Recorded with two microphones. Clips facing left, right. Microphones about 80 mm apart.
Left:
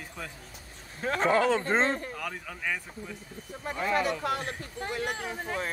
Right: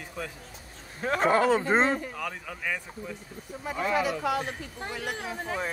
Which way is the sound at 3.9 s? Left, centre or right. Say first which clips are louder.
Right 1 dB; left.